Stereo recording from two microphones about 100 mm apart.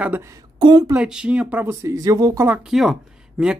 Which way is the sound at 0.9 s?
10° right (ahead or behind).